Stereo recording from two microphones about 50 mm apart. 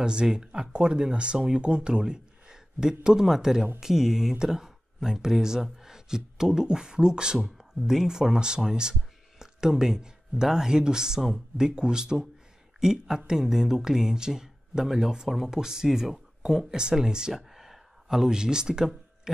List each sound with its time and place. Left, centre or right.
0.0 s speech: centre
7.3 s speech: centre